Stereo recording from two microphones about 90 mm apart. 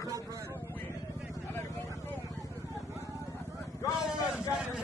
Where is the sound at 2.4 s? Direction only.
35° right (ahead or behind).